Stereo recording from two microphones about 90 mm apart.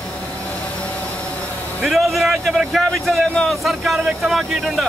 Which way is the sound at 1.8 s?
Centre (ahead or behind).